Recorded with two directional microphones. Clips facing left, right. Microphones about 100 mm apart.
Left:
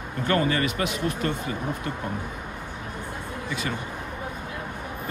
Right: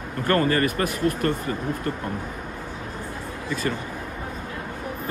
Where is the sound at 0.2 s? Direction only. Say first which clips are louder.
Right 3 dB; 45° right (ahead or behind).